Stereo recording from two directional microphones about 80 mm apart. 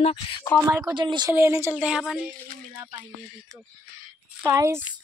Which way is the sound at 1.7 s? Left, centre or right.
Centre.